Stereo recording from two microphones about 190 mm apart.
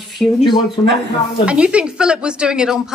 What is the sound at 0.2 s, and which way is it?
Speech, centre (ahead or behind).